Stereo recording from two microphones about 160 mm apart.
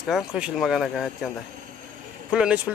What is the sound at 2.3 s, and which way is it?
Speech, 5° right (ahead or behind).